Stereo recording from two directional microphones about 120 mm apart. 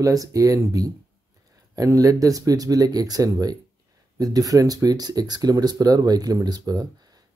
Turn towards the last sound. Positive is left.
turn(degrees=-35)  # may be behind; listen again after turning